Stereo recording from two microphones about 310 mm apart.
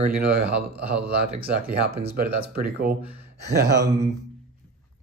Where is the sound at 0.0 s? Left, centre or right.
Right.